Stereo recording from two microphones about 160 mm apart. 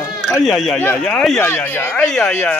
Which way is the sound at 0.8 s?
15° left (ahead or behind).